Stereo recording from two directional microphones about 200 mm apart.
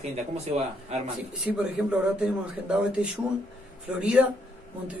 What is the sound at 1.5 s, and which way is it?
A man's voice, 5° right (ahead or behind).